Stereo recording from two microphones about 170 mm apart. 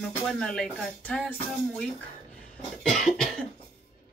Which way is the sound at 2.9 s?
Centre (ahead or behind).